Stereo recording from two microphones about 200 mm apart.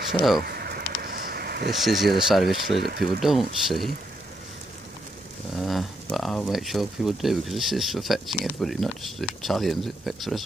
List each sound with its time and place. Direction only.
0.4 s a sound: 50° right (ahead or behind)
1.7 s speech: centre (ahead or behind)
5.6 s speech: centre (ahead or behind)